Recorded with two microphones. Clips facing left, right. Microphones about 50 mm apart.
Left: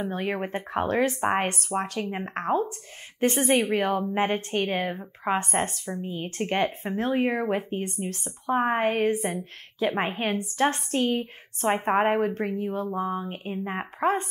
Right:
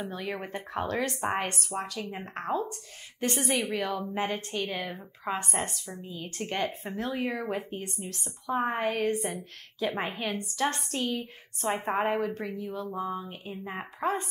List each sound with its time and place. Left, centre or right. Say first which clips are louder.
0.1 s a woman's voice: left 6 dB; left